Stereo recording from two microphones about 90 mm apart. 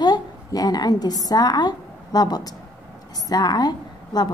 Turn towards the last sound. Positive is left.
turn(degrees=50)  # may be behind; listen again after turning